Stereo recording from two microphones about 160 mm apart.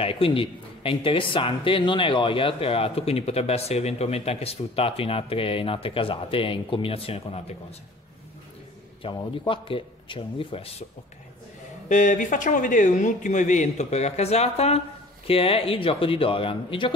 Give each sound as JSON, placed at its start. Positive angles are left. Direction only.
{"t": 0.0, "sound": "speech", "side_deg": 35}
{"t": 9.0, "sound": "speech", "side_deg": 30}
{"t": 11.9, "sound": "speech", "side_deg": 50}